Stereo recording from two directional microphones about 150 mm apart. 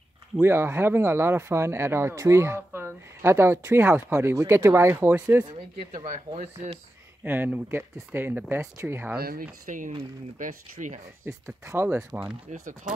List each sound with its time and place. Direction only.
0.4 s speech: 15° right (ahead or behind)
5.4 s speech: 25° right (ahead or behind)
6.0 s speech: 55° right (ahead or behind)
7.2 s speech: 10° right (ahead or behind)
9.2 s speech: 85° right
9.7 s speech: 60° right (ahead or behind)
11.3 s speech: 15° right (ahead or behind)
12.4 s speech: 55° right (ahead or behind)